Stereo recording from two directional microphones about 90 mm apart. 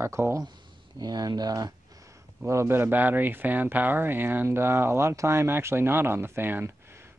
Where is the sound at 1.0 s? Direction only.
50° right (ahead or behind).